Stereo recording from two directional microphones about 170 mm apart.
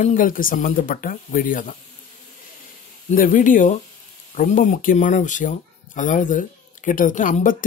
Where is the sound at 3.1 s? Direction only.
50° left (ahead or behind).